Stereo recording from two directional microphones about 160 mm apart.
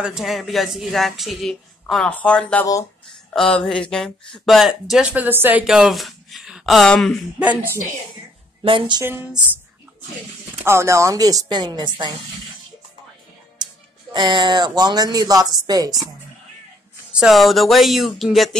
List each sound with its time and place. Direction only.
0.0 s speech: 5° right (ahead or behind)
8.6 s speech: 30° right (ahead or behind)
9.0 s speech: 15° right (ahead or behind)
10.6 s a woman's voice: 15° right (ahead or behind)
14.1 s a woman's voice: 30° right (ahead or behind)
17.1 s speech: 5° right (ahead or behind)